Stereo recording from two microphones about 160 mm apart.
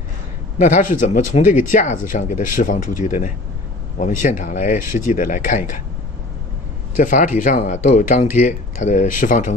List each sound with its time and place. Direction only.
0.6 s speech: 50° left (ahead or behind)
7.0 s speech: 55° left (ahead or behind)